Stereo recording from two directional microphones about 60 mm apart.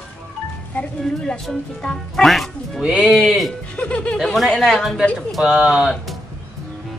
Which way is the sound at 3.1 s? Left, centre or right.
Centre.